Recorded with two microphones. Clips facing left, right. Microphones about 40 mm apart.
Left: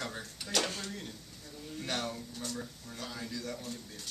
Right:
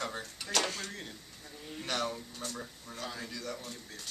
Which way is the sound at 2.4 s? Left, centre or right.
Centre.